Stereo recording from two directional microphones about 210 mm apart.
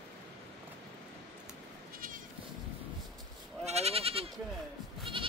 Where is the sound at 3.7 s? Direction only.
30° right (ahead or behind).